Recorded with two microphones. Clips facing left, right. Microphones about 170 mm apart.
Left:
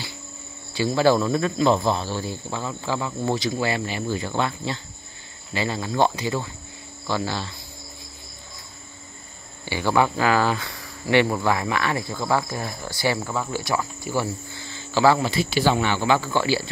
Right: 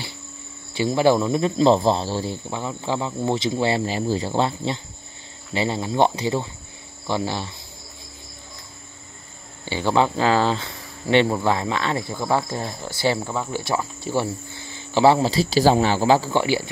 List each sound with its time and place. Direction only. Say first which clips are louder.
0.7 s speech: right 1 dB; 20° right (ahead or behind)
1.6 s speech: right 5 dB; 30° right (ahead or behind)
2.5 s speech: right 1 dB; 20° right (ahead or behind)
9.7 s speech: right 1 dB; 20° right (ahead or behind)